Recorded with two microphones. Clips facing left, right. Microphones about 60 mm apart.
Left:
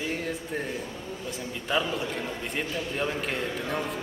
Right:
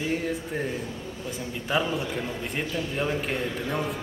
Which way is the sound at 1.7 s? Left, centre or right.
Centre.